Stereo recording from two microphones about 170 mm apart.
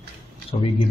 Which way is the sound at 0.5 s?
40° left (ahead or behind).